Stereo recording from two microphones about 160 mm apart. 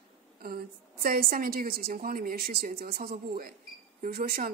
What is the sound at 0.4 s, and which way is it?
A woman's voice, 70° right (ahead or behind).